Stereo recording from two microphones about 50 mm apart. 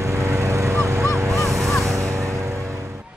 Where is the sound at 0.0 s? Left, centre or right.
Right.